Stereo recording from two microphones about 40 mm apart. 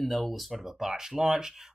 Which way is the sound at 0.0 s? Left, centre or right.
Centre.